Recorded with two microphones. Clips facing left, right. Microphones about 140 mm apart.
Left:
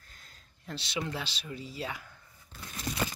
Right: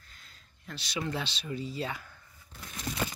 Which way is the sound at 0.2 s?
30° left (ahead or behind).